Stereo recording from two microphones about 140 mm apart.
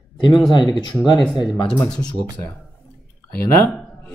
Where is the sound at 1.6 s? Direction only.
5° left (ahead or behind).